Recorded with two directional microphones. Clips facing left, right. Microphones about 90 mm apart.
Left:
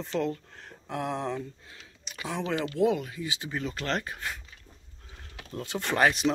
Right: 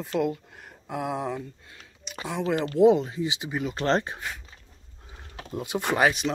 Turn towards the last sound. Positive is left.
turn(degrees=-5)  # may be behind; listen again after turning